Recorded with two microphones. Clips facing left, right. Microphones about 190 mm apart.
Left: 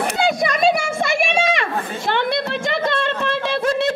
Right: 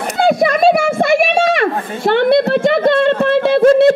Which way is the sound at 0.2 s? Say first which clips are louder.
Right 8 dB; 55° right (ahead or behind).